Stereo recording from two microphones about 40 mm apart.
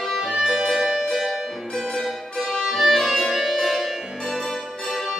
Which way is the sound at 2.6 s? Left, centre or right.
Centre.